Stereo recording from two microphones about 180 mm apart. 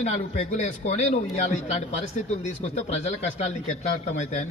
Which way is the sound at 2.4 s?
40° left (ahead or behind).